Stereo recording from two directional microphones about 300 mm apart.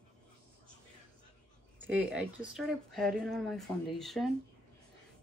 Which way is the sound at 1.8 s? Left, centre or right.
Centre.